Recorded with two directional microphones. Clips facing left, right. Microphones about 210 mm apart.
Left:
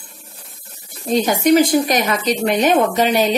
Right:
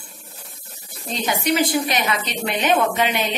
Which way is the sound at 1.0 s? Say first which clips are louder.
Left 8 dB; 45° left (ahead or behind).